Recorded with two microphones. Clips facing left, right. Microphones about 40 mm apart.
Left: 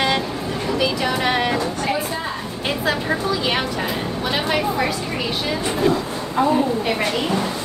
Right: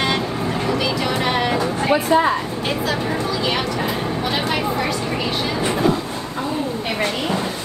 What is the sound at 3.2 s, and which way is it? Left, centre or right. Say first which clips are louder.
Speech: even; centre.